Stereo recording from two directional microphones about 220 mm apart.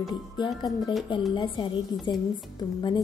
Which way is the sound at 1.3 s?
20° left (ahead or behind).